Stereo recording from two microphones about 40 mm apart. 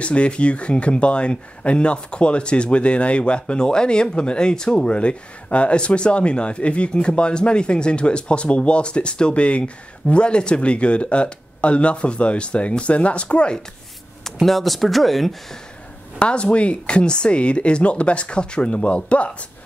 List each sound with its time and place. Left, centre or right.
0.0 s speech: left
4.8 s speech: left
14.2 s speech: centre
16.2 s speech: left